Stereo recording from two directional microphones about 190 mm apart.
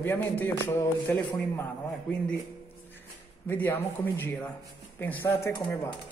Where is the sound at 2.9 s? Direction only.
10° left (ahead or behind).